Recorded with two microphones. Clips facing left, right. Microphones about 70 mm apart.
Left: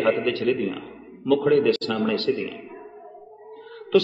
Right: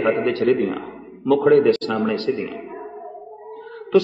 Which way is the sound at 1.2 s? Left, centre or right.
Right.